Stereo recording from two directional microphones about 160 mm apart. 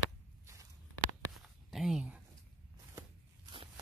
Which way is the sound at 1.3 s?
Centre (ahead or behind).